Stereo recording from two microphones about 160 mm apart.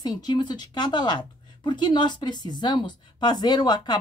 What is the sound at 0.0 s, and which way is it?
A woman's voice, 25° left (ahead or behind).